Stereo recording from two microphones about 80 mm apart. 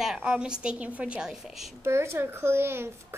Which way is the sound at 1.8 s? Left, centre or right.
Right.